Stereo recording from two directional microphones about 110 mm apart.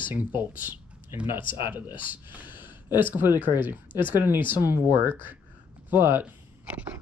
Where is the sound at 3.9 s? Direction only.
45° left (ahead or behind).